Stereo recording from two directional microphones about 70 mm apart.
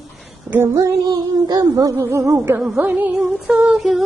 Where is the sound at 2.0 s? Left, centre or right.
Right.